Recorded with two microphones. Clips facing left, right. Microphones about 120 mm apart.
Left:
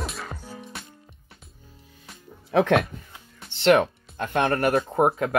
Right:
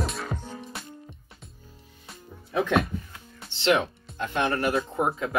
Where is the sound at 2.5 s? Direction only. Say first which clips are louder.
Left 4 dB; 70° left (ahead or behind).